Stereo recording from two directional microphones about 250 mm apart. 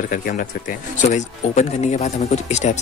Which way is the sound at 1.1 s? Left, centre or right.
Left.